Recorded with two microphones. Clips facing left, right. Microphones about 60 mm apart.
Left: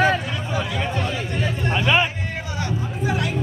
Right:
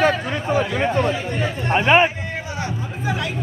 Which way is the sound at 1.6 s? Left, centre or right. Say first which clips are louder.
Right 5 dB; right.